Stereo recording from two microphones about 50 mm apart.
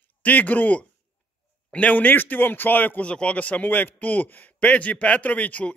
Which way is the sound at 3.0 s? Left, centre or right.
Left.